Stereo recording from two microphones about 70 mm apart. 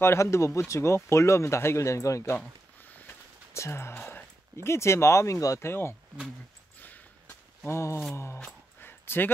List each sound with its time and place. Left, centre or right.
0.0 s speech: left
3.5 s speech: left
4.6 s speech: left
5.7 s speech: left
6.8 s a sound: left
7.6 s speech: left
8.8 s a sound: left